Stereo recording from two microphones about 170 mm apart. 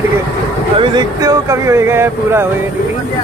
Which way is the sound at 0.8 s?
25° right (ahead or behind).